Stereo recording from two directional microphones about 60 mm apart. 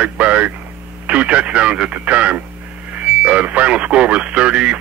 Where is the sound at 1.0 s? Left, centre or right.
Right.